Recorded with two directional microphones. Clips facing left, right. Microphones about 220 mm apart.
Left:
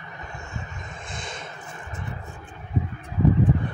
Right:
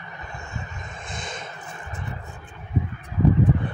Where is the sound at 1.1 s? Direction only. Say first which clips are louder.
Right 2 dB; 20° right (ahead or behind).